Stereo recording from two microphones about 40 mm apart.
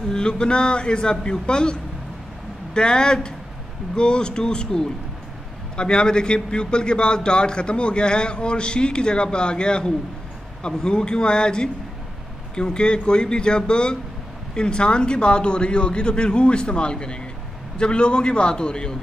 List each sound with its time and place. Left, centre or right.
0.1 s a man's voice: left